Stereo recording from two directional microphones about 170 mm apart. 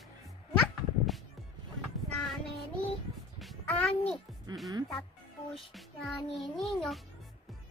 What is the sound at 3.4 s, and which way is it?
Child singing, 5° left (ahead or behind).